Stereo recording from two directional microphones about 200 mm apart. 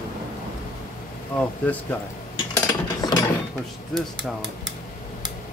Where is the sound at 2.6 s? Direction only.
20° left (ahead or behind).